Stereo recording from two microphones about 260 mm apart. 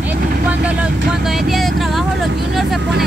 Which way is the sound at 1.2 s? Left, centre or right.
Centre.